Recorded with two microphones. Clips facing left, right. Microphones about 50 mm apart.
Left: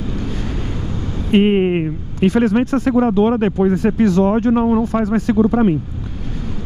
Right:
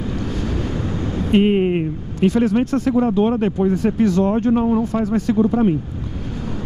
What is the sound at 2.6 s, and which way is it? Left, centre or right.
Speech, left.